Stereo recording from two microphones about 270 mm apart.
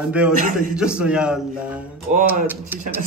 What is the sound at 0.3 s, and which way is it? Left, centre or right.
Speech, right.